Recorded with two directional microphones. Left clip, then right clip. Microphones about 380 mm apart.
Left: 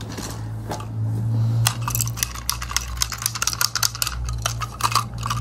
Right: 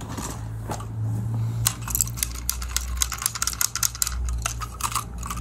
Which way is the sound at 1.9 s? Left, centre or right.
Centre.